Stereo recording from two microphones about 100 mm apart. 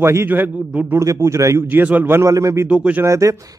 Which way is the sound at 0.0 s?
25° right (ahead or behind).